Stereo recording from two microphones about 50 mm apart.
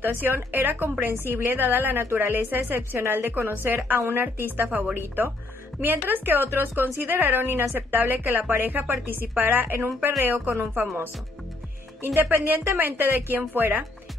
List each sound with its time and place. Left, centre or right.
0.0 s speech: right
12.0 s speech: right